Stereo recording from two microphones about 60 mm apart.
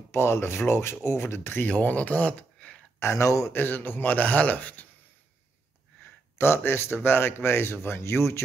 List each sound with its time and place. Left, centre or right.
0.1 s speech: left
1.7 s speech: left
3.0 s speech: left
3.5 s speech: left
6.3 s speech: left